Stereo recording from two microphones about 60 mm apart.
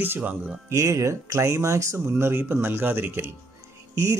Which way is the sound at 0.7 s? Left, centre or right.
Right.